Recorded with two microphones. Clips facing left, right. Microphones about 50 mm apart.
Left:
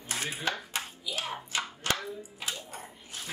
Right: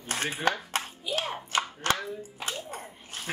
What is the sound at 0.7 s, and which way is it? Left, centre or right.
Clapping, right.